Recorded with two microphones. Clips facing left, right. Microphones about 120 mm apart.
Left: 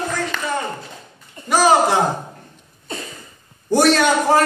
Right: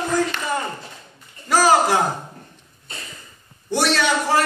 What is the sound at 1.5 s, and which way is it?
Speech, 20° left (ahead or behind).